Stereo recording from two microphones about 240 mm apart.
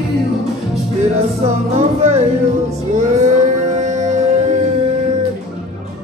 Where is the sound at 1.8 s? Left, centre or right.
Right.